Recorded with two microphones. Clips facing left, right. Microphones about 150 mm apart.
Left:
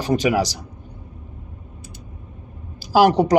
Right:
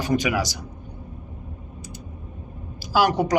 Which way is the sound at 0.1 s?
35° left (ahead or behind).